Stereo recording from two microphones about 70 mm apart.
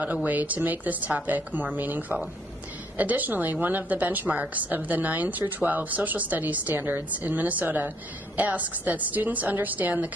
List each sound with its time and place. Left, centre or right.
0.0 s a woman's voice: right